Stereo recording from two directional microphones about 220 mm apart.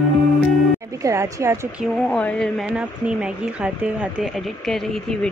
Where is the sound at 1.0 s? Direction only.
15° right (ahead or behind).